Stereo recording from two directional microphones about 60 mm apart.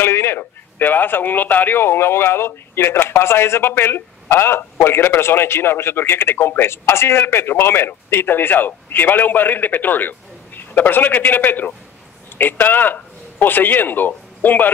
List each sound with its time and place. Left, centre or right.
0.0 s a man's voice: left